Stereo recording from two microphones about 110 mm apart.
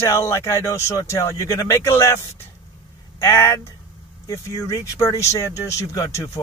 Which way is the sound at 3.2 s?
25° left (ahead or behind).